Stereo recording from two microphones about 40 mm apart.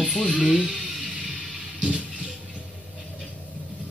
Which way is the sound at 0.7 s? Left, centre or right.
Centre.